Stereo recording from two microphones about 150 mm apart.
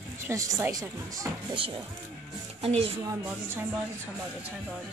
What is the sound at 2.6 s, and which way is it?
Speech, 40° right (ahead or behind).